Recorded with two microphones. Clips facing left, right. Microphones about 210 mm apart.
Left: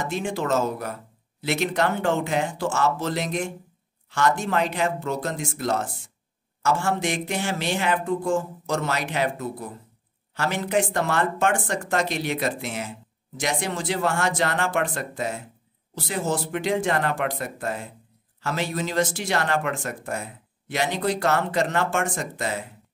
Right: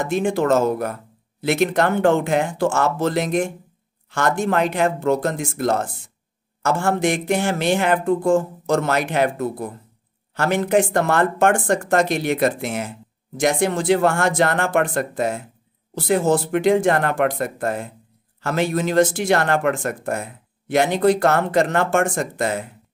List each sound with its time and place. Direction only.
0.0 s speech: 50° right (ahead or behind)